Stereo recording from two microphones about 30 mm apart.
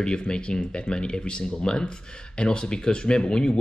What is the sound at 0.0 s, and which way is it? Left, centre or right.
Speech, left.